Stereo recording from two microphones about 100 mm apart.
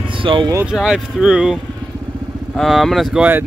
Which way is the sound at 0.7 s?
5° right (ahead or behind).